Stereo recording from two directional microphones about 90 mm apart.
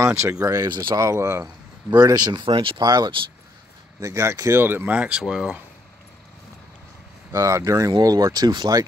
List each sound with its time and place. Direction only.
0.0 s speech: 35° right (ahead or behind); by 0.9 s 50° right (ahead or behind)
0.9 s speech: 35° right (ahead or behind)
1.9 s speech: 50° right (ahead or behind)
2.4 s speech: 75° right (ahead or behind)
2.8 s speech: 50° right (ahead or behind)
4.0 s speech: 30° right (ahead or behind); by 5.6 s 10° right (ahead or behind)
7.3 s speech: 35° right (ahead or behind)